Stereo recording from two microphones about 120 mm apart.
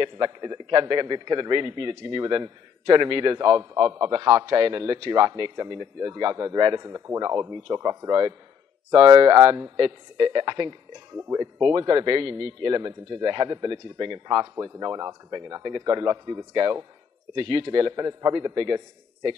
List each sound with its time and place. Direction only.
0.0 s a man's voice: 35° right (ahead or behind)
11.1 s a man's voice: 25° right (ahead or behind)